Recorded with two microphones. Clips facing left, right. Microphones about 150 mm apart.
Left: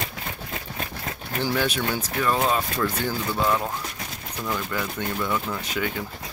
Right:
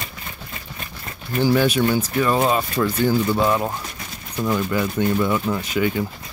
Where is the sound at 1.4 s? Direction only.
5° right (ahead or behind).